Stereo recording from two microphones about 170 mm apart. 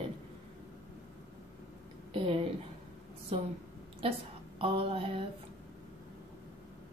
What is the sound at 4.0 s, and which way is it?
A woman's voice, 35° right (ahead or behind).